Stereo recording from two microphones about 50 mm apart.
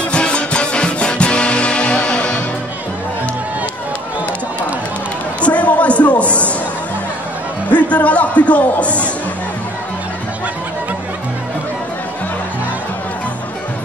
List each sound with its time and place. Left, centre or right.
0.1 s music: left
5.4 s a sound: left
7.7 s music: left